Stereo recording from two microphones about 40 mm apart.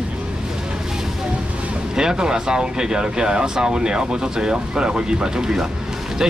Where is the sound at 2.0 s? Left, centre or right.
Centre.